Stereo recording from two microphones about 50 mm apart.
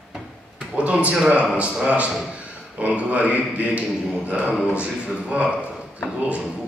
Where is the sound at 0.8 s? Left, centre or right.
Right.